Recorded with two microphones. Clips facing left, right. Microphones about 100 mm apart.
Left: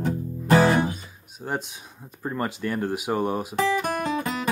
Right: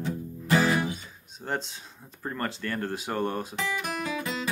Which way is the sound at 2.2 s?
15° left (ahead or behind).